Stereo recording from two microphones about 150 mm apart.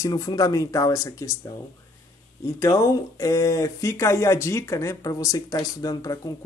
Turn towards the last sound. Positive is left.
turn(degrees=25)  # may be behind; listen again after turning